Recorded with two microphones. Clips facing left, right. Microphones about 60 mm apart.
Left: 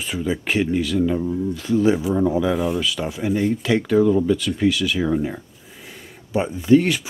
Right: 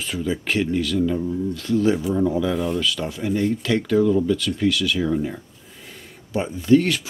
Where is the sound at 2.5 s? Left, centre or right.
Centre.